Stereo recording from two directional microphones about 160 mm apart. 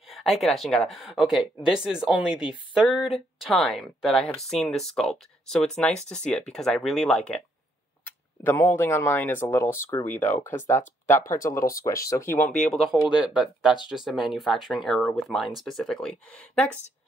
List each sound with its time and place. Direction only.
0.1 s speech: centre (ahead or behind)
12.7 s speech: 5° right (ahead or behind)